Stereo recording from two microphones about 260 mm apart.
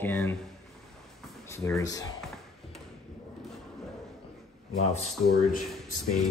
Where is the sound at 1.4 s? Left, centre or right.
Centre.